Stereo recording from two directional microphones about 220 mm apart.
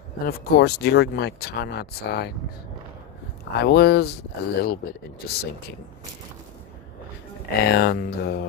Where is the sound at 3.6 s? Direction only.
50° left (ahead or behind).